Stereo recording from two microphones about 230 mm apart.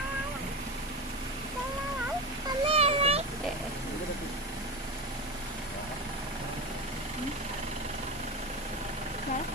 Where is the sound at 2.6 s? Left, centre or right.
Right.